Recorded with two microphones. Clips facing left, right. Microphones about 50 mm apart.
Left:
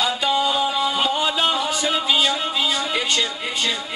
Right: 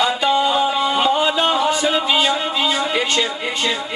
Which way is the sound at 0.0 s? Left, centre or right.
Centre.